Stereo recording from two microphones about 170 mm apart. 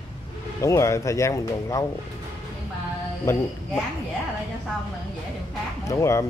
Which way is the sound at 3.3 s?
15° left (ahead or behind).